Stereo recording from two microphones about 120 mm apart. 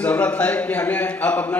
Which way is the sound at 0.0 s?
10° left (ahead or behind).